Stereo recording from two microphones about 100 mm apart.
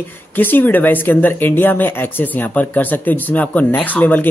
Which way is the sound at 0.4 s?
20° left (ahead or behind).